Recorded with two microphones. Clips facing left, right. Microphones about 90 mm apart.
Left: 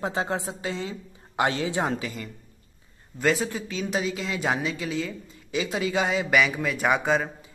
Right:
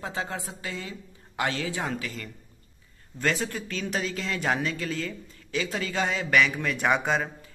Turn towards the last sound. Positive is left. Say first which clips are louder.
# left 2 dB
turn(degrees=0)  # may be behind; listen again after turning